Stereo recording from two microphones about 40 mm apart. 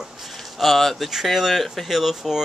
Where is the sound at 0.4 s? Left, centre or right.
Centre.